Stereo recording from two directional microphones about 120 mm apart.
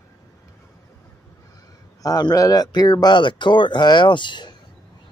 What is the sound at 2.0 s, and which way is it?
Speech, 30° left (ahead or behind).